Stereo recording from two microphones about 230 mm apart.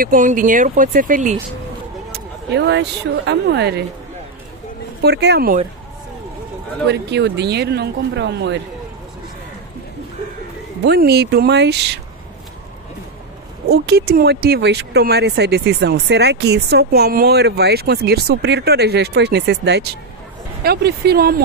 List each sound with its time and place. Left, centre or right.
0.0 s speech: right
2.1 s speech: right
5.0 s speech: right
6.9 s speech: right
10.8 s speech: right
13.7 s speech: right